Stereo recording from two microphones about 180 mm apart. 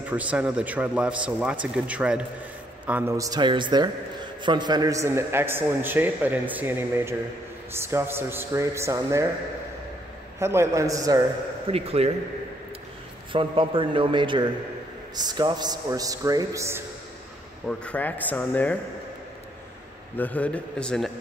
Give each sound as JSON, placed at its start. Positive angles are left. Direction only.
{"t": 0.0, "sound": "a man's voice", "side_deg": -10}
{"t": 10.4, "sound": "a man's voice", "side_deg": -15}
{"t": 11.6, "sound": "speech", "side_deg": -35}
{"t": 13.3, "sound": "a man's voice", "side_deg": -30}
{"t": 17.6, "sound": "speech", "side_deg": 5}
{"t": 20.2, "sound": "speech", "side_deg": 10}